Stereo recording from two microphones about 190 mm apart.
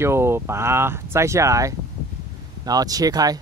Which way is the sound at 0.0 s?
15° right (ahead or behind).